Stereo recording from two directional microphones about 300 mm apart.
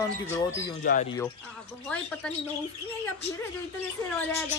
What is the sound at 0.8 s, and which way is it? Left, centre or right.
Speech, left.